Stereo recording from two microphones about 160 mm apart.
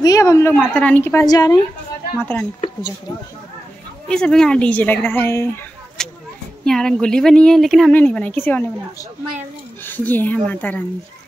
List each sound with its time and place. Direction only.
0.0 s a woman's voice: 20° left (ahead or behind)
1.2 s speech: 25° left (ahead or behind)
2.1 s a woman's voice: 10° left (ahead or behind)
4.1 s a woman's voice: 5° left (ahead or behind)
6.0 s speech: 5° left (ahead or behind)
9.8 s a woman's voice: 10° left (ahead or behind)